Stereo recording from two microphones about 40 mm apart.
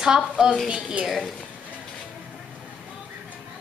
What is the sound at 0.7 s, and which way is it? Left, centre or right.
Speech, right.